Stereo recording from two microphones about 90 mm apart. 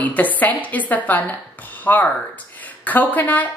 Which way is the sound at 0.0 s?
20° left (ahead or behind).